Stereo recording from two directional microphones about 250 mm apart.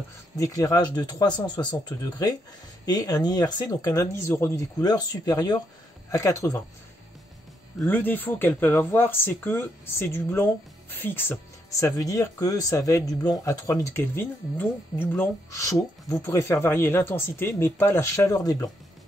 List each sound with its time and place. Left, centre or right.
0.4 s speech: centre
7.8 s speech: centre